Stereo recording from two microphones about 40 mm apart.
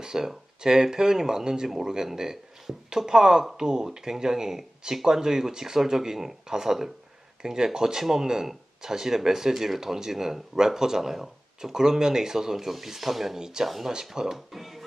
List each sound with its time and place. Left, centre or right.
0.0 s speech: centre